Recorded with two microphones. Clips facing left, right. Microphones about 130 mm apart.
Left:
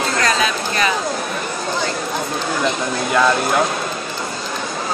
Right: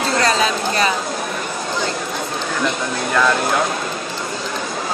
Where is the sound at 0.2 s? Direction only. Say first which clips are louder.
Right 2 dB; 35° right (ahead or behind).